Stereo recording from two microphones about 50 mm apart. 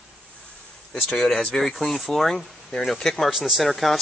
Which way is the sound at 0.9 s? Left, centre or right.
Centre.